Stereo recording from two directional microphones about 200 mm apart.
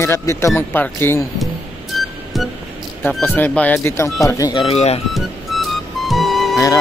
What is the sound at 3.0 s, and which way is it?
Speech, 10° left (ahead or behind).